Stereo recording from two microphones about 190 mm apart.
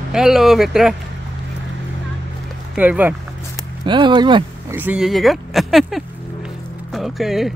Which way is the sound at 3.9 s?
25° right (ahead or behind).